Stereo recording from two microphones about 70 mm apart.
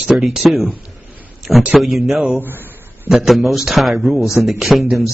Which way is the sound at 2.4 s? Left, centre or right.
Right.